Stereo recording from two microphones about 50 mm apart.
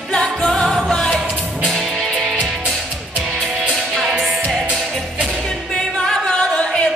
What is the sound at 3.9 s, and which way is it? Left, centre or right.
Music, centre.